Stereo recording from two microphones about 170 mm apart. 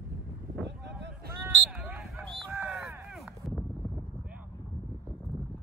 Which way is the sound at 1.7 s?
5° right (ahead or behind).